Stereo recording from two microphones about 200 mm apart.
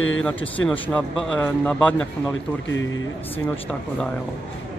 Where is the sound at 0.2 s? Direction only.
5° left (ahead or behind).